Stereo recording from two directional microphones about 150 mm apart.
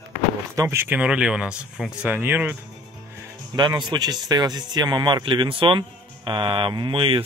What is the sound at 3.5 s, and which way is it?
Speech, 30° right (ahead or behind).